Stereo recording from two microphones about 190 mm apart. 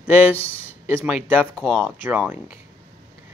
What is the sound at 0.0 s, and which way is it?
Speech, 5° right (ahead or behind).